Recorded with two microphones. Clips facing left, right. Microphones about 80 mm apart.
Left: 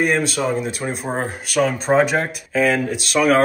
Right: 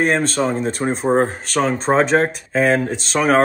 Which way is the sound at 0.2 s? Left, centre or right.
Centre.